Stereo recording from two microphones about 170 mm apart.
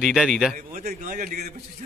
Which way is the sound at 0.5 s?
50° right (ahead or behind).